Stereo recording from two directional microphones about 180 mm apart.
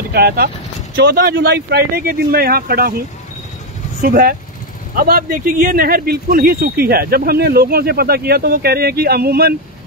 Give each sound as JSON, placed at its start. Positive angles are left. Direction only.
{"t": 0.1, "sound": "speech", "side_deg": -55}
{"t": 4.0, "sound": "speech", "side_deg": -55}